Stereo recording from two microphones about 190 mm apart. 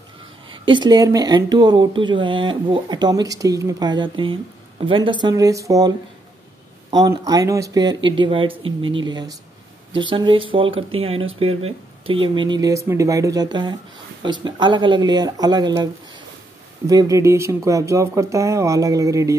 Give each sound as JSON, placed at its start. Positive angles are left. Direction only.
{"t": 0.5, "sound": "speech", "side_deg": -25}